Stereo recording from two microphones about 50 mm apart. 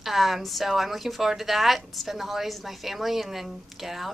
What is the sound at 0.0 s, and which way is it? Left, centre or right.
A woman's voice, centre.